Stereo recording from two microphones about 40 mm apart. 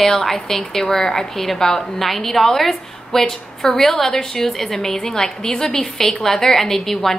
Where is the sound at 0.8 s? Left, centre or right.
Left.